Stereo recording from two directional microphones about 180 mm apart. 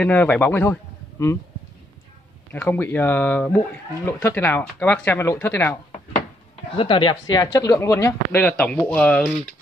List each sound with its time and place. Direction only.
0.0 s speech: 10° left (ahead or behind)
2.5 s speech: 10° left (ahead or behind)
6.8 s speech: 25° left (ahead or behind); by 9.4 s 5° left (ahead or behind)